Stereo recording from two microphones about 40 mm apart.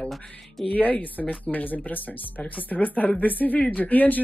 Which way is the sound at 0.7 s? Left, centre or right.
Left.